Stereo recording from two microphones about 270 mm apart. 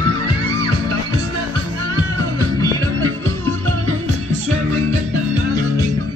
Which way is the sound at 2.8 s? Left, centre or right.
Right.